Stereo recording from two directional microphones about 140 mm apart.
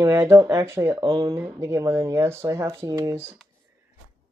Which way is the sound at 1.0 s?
35° right (ahead or behind).